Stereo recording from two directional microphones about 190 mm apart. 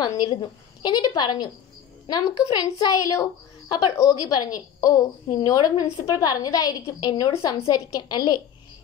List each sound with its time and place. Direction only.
0.0 s a woman's voice: 20° left (ahead or behind)